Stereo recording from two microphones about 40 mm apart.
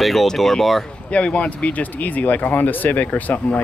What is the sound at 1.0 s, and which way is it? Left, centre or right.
Speech, left.